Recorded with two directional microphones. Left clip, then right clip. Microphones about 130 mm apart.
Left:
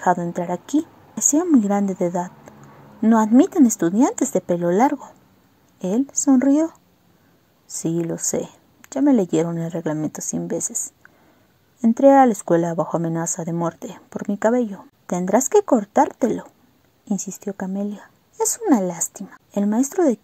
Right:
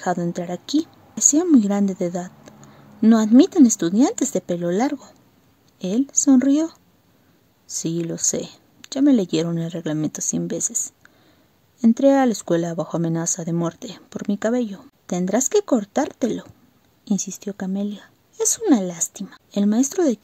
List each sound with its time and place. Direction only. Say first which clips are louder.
0.0 s a woman's voice: left 4 dB; 35° right (ahead or behind)